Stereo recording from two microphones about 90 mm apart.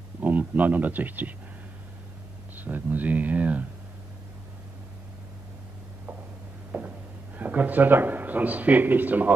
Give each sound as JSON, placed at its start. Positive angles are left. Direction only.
{"t": 0.2, "sound": "speech", "side_deg": -15}
{"t": 2.5, "sound": "speech", "side_deg": -20}
{"t": 6.7, "sound": "a sound", "side_deg": -20}
{"t": 7.3, "sound": "speech", "side_deg": -20}